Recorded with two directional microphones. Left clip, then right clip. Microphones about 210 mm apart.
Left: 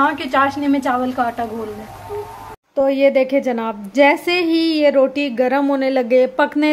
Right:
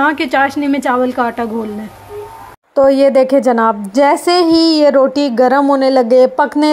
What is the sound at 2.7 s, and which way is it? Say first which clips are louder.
A woman's voice: right 5 dB; 25° right (ahead or behind).